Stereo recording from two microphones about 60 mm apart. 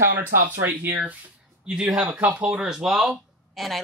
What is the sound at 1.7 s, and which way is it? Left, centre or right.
Speech, centre.